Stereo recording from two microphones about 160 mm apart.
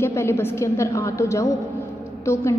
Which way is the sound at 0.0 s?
15° left (ahead or behind).